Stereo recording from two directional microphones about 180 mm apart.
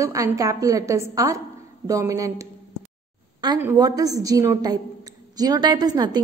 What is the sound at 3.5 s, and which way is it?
A woman's voice, 15° right (ahead or behind).